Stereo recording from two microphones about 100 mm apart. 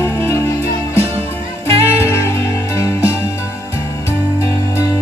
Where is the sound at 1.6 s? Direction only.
25° left (ahead or behind).